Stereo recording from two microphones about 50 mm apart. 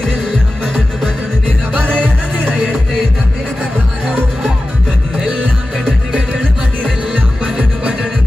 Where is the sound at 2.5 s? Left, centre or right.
Centre.